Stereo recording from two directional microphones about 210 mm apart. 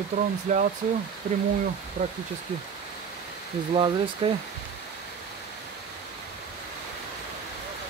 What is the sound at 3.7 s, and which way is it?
Speech, 25° right (ahead or behind).